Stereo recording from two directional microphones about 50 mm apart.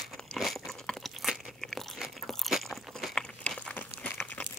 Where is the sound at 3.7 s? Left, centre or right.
Left.